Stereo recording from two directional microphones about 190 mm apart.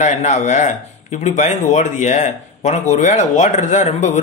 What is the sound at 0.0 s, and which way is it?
Speech, 40° left (ahead or behind).